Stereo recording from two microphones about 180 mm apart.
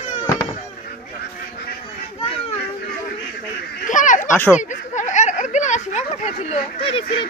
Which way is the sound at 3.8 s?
45° left (ahead or behind).